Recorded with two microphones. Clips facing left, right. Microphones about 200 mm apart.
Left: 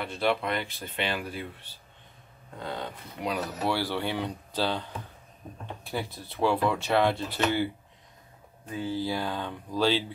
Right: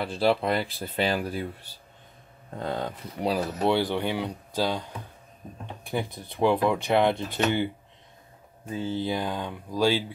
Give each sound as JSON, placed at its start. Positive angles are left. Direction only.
{"t": 0.0, "sound": "speech", "side_deg": -30}
{"t": 3.2, "sound": "speech", "side_deg": -30}
{"t": 5.9, "sound": "speech", "side_deg": -15}